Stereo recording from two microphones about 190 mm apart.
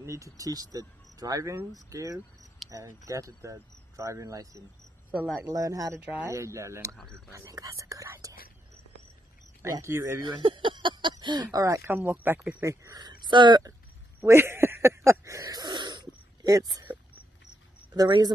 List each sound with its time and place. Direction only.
0.0 s speech: 15° right (ahead or behind)
2.6 s a sound: centre (ahead or behind)
3.1 s speech: 15° right (ahead or behind)
5.9 s speech: 10° right (ahead or behind)
9.6 s speech: 15° right (ahead or behind)
10.2 s speech: 25° right (ahead or behind)
14.2 s a sound: 15° right (ahead or behind)
17.9 s speech: 20° right (ahead or behind)